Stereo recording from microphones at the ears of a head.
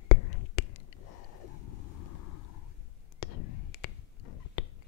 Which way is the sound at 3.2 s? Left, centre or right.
Left.